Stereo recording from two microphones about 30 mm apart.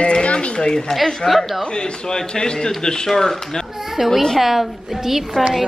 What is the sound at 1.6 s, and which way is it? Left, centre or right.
A man's voice, left.